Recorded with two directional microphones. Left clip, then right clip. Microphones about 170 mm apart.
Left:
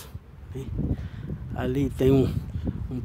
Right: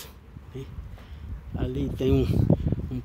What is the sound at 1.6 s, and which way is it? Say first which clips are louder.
Speech: left 4 dB; 20° left (ahead or behind).